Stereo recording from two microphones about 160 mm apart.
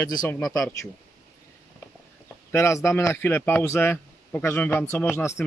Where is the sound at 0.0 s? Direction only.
20° left (ahead or behind).